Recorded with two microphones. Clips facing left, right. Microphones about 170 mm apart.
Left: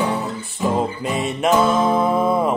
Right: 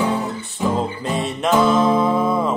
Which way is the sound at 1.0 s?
5° left (ahead or behind).